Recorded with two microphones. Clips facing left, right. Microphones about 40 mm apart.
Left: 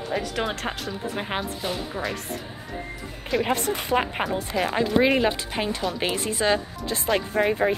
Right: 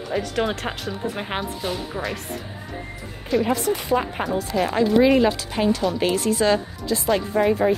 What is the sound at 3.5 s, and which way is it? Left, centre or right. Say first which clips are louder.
Speech: right 2 dB; left.